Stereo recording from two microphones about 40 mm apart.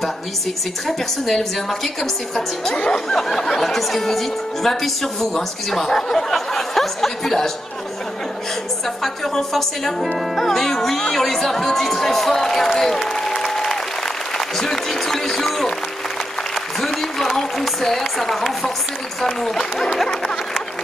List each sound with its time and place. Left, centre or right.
0.8 s a woman's voice: centre
2.7 s speech: left
3.1 s speech: centre
9.0 s speech: centre
16.8 s speech: centre